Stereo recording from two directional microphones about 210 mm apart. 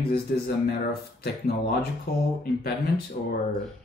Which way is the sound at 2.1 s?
50° left (ahead or behind).